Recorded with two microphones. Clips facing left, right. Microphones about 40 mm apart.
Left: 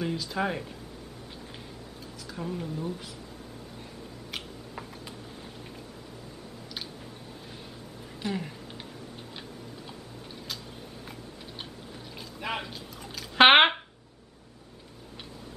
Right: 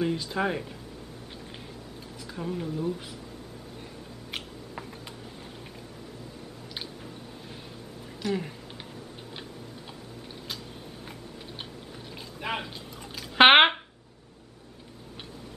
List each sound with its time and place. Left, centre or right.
0.0 s speech: centre
2.3 s speech: centre
8.2 s speech: centre
12.4 s pour: centre
13.1 s a sound: centre